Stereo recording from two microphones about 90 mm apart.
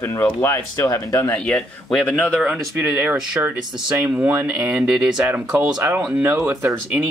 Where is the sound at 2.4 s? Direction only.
10° right (ahead or behind).